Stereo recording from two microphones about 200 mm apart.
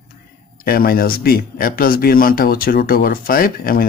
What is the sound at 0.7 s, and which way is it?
Speech, 45° left (ahead or behind).